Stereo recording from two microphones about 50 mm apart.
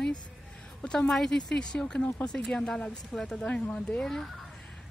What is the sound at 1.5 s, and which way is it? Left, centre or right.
Speech, centre.